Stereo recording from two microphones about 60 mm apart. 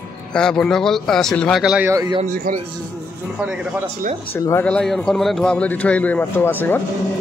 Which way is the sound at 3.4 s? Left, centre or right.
Right.